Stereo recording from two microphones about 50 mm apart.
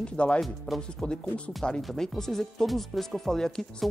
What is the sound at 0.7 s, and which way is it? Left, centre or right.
Speech, centre.